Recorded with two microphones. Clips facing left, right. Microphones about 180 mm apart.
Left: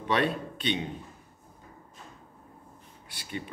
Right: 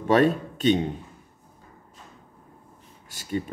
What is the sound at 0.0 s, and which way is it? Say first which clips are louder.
Speech: right 8 dB; 45° right (ahead or behind).